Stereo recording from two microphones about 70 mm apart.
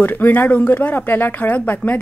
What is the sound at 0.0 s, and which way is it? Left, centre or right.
A woman's voice, left.